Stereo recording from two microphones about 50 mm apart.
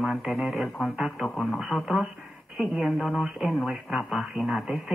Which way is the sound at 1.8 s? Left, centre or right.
Centre.